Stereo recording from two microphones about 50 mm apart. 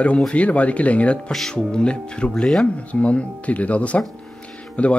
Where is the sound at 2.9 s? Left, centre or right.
Left.